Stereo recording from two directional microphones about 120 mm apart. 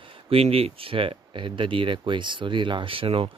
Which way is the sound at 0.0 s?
50° right (ahead or behind).